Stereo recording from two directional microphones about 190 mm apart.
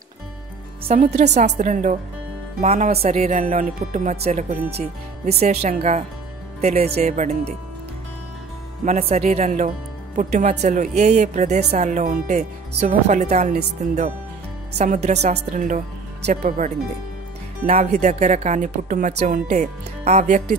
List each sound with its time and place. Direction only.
0.8 s speech: 40° right (ahead or behind)
8.8 s speech: 35° right (ahead or behind)
15.1 s speech: 40° right (ahead or behind)